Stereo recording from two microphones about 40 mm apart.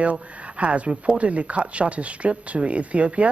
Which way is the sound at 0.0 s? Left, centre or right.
Right.